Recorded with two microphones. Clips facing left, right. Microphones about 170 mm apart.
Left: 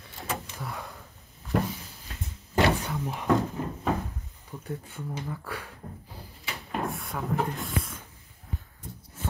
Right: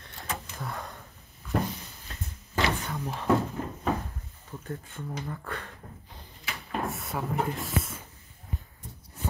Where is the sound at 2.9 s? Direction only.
5° left (ahead or behind).